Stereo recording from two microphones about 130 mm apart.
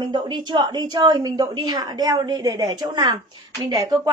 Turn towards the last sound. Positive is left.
turn(degrees=-30)  # may be behind; listen again after turning